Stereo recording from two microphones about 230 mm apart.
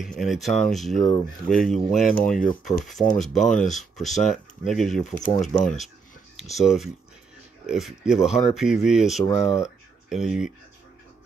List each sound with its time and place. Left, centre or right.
0.0 s speech: centre